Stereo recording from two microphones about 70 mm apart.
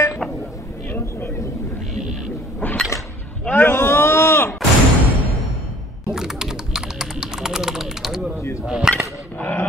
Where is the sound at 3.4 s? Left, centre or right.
Left.